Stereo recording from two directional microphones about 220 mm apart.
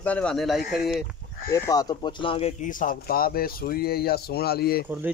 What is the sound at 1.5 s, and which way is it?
Speech, 15° left (ahead or behind).